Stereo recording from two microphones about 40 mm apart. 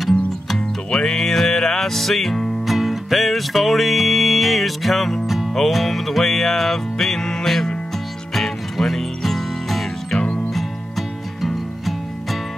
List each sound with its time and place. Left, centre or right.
0.0 s music: centre
2.6 s music: centre
5.2 s music: centre
10.1 s music: left
10.5 s music: centre